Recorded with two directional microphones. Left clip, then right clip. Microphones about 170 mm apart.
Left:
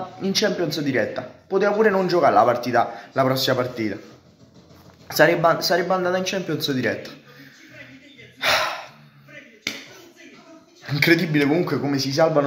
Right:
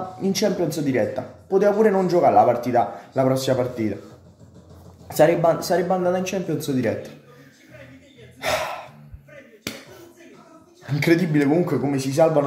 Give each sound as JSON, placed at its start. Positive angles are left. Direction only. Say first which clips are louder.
{"t": 0.2, "sound": "speech", "louder": "even", "side_deg": -10}
{"t": 5.0, "sound": "speech", "louder": "even", "side_deg": -5}
{"t": 8.4, "sound": "gasp", "louder": "left 4 dB", "side_deg": -10}
{"t": 9.7, "sound": "a sound", "louder": "left 4 dB", "side_deg": -55}
{"t": 10.9, "sound": "speech", "louder": "left 2 dB", "side_deg": -10}